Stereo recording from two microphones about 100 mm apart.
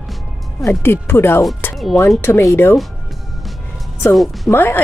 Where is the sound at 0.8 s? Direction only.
25° left (ahead or behind).